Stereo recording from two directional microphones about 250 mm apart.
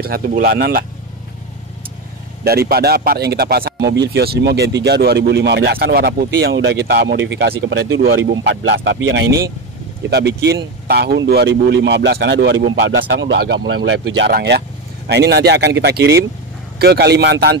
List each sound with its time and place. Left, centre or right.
0.0 s speech: right
2.4 s speech: right